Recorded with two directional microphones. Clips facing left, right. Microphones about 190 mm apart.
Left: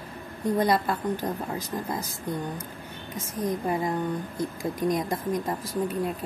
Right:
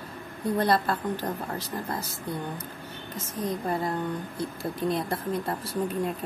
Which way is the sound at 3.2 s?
10° left (ahead or behind).